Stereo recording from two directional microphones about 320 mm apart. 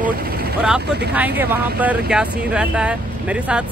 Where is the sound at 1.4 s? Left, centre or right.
Centre.